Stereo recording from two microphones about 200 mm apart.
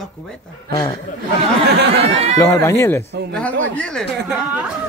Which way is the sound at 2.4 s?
10° left (ahead or behind).